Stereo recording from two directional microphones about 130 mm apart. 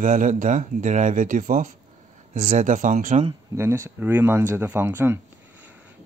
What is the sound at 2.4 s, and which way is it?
Speech, 80° right.